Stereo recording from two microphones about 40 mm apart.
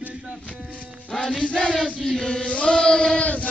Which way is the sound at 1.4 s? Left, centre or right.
Left.